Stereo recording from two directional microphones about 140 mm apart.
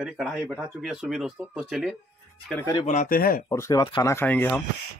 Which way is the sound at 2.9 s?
75° left (ahead or behind).